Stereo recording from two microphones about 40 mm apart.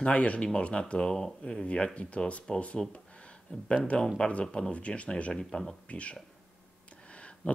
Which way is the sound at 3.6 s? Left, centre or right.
Left.